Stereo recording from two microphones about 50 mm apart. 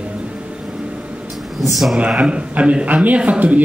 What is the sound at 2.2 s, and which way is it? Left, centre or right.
A man's voice, right.